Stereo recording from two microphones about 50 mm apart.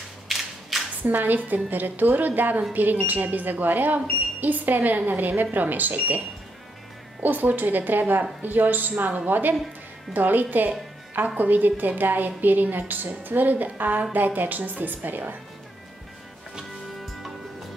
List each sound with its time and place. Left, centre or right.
0.3 s a sound: centre
1.0 s speech: right
7.2 s speech: right